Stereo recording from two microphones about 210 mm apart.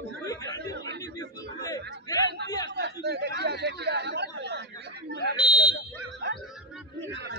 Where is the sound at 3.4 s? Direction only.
50° right (ahead or behind).